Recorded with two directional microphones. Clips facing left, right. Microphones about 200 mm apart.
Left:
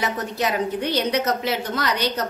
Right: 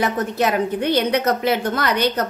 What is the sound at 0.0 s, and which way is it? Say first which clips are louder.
A woman's voice: right 5 dB; 55° right (ahead or behind).